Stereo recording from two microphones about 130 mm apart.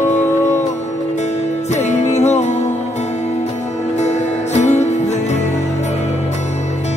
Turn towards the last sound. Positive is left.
turn(degrees=60)  # may be behind; listen again after turning